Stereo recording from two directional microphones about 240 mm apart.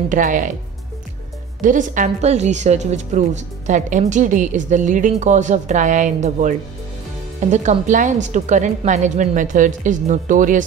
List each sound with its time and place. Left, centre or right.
0.1 s a woman's voice: right
1.6 s a woman's voice: right